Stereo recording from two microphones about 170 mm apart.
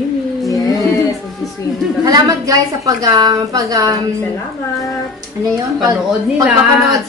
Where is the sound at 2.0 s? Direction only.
20° right (ahead or behind).